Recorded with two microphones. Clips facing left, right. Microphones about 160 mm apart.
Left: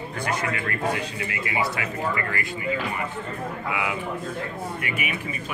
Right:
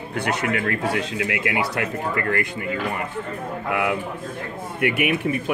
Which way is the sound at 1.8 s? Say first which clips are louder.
Right 3 dB; 55° right (ahead or behind).